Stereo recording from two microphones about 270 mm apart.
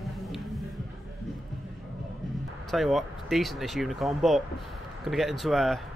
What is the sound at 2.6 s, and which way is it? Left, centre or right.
Speech, centre.